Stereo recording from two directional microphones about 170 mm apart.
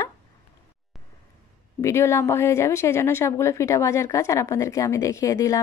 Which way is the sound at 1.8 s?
15° left (ahead or behind).